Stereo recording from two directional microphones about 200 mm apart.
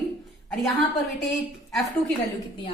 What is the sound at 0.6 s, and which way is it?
Speech, centre (ahead or behind).